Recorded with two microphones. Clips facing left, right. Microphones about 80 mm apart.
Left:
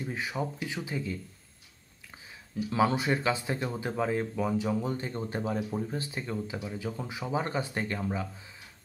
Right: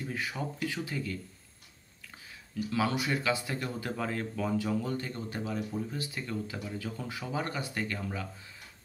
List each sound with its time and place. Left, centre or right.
0.0 s speech: left
2.5 s speech: left